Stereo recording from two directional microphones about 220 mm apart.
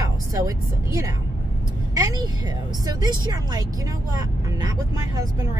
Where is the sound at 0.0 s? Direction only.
15° right (ahead or behind).